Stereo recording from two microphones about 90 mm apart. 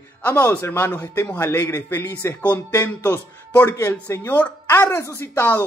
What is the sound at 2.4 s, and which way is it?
Speech, 20° left (ahead or behind).